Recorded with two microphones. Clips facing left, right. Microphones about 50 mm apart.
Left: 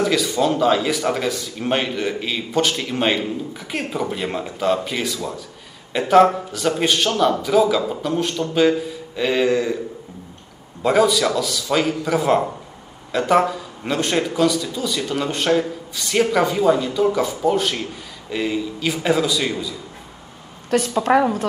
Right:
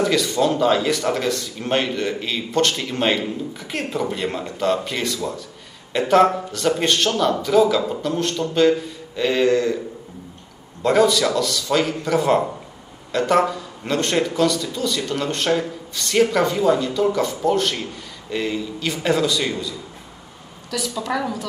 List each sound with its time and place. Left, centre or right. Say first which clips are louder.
0.0 s speech: even; centre
10.8 s speech: even; centre
20.7 s a woman's voice: left 8 dB; left